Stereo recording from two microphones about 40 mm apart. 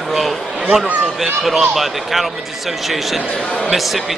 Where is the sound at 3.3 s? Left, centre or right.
Left.